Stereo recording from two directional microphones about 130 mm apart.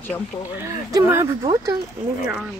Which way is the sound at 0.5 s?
20° right (ahead or behind).